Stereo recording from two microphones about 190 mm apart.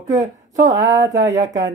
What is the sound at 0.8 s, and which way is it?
Speech, 15° right (ahead or behind).